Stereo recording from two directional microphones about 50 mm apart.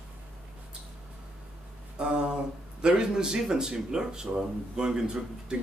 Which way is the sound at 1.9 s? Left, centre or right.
Centre.